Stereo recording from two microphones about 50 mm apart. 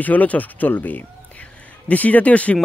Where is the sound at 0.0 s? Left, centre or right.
Left.